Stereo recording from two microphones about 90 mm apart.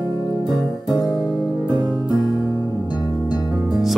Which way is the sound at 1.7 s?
50° right (ahead or behind).